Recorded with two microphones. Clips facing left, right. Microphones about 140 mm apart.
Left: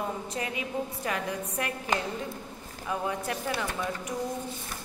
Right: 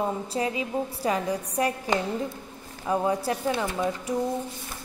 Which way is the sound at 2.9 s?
30° right (ahead or behind).